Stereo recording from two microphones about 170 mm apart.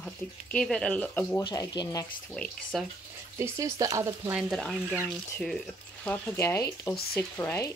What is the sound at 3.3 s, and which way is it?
Frying, 15° right (ahead or behind).